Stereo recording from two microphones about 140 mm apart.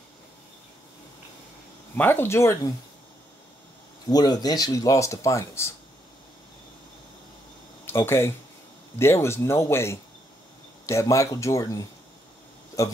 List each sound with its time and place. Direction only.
2.0 s speech: 15° left (ahead or behind)
4.1 s speech: 30° left (ahead or behind)
7.8 s speech: 15° left (ahead or behind)